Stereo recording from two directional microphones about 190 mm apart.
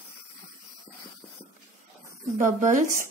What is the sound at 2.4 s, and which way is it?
Speech, 40° right (ahead or behind).